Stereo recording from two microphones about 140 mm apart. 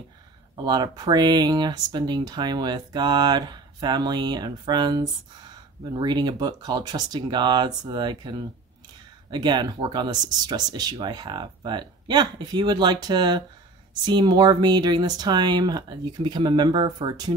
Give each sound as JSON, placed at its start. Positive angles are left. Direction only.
{"t": 0.7, "sound": "speech", "side_deg": -30}